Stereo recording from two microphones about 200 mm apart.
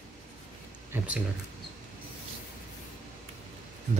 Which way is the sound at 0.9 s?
10° right (ahead or behind).